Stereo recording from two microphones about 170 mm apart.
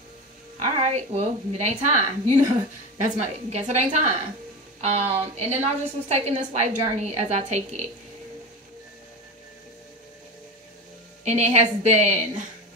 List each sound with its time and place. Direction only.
0.6 s a woman's voice: 40° right (ahead or behind)
3.4 s a woman's voice: 40° right (ahead or behind)
11.2 s a woman's voice: 40° right (ahead or behind)